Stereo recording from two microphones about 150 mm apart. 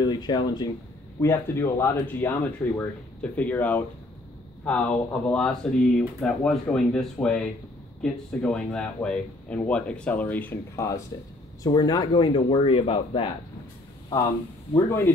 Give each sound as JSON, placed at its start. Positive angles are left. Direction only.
{"t": 0.0, "sound": "speech", "side_deg": 30}
{"t": 1.2, "sound": "speech", "side_deg": 20}
{"t": 14.9, "sound": "speech", "side_deg": 15}